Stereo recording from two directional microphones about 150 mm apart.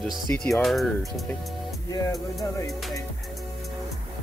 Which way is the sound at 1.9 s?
20° left (ahead or behind).